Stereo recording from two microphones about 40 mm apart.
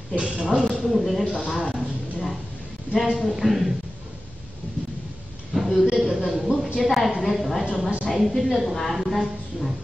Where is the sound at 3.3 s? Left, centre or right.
Centre.